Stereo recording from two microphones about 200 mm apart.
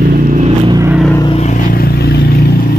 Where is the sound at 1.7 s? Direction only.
50° left (ahead or behind).